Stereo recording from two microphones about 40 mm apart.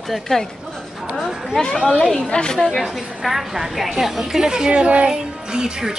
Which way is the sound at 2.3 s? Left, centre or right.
Left.